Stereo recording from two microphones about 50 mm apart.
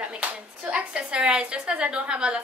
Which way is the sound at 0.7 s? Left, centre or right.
Right.